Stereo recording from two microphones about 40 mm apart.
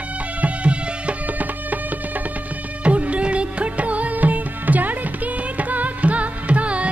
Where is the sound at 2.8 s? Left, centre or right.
Right.